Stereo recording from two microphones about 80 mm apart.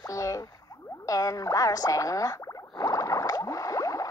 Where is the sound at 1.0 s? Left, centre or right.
Left.